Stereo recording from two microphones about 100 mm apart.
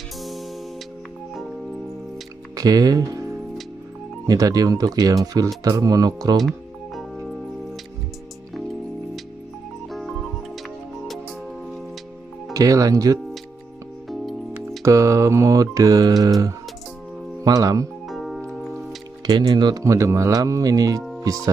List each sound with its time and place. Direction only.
0.2 s music: centre (ahead or behind)
2.5 s speech: 40° right (ahead or behind)
4.3 s mantra: 35° right (ahead or behind)
6.3 s music: centre (ahead or behind)
9.8 s music: centre (ahead or behind)
12.5 s mantra: 35° right (ahead or behind)
14.0 s music: centre (ahead or behind)
14.8 s mantra: 30° right (ahead or behind)
17.4 s speech: 35° right (ahead or behind)
18.0 s music: centre (ahead or behind)
19.2 s speech: 45° right (ahead or behind)
19.8 s mantra: 30° right (ahead or behind)